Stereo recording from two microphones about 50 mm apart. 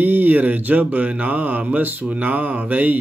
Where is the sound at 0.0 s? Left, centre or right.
Right.